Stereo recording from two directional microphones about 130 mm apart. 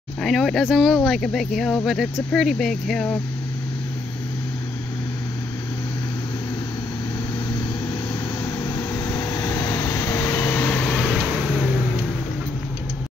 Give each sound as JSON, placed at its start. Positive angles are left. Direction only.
{"t": 0.2, "sound": "speech", "side_deg": 0}
{"t": 8.6, "sound": "vehicle", "side_deg": 30}